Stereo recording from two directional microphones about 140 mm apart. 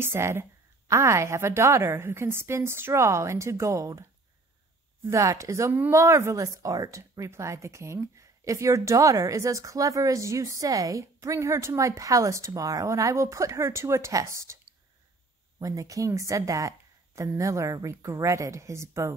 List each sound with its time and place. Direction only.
0.0 s speech: 15° right (ahead or behind)
5.0 s speech: 20° right (ahead or behind)
15.6 s speech: 25° right (ahead or behind)